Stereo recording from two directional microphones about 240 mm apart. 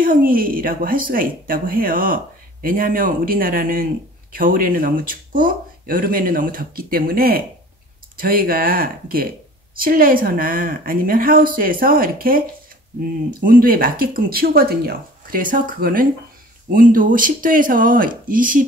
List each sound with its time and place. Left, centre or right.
0.0 s speech: right